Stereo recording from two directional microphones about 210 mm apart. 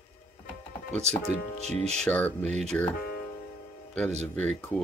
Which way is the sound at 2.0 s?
5° left (ahead or behind).